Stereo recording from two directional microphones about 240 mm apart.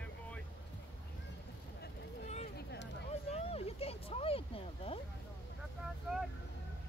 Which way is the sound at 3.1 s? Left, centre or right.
Left.